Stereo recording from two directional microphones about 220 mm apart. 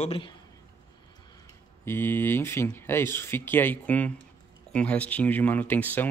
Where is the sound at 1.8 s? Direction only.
10° left (ahead or behind).